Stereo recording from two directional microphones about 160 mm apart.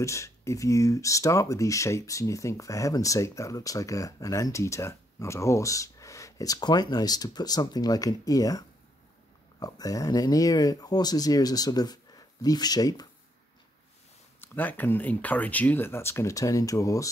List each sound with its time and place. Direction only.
0.0 s speech: 20° left (ahead or behind)
14.4 s speech: 10° left (ahead or behind)